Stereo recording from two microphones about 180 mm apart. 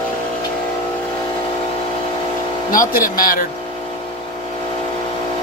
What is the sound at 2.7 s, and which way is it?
Speech, 50° left (ahead or behind).